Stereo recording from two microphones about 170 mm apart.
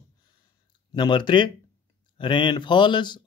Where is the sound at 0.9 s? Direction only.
25° left (ahead or behind).